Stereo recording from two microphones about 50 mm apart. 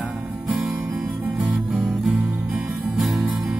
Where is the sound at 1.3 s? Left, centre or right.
Centre.